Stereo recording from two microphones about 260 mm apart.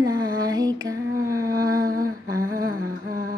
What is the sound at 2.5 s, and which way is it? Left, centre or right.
Humming, right.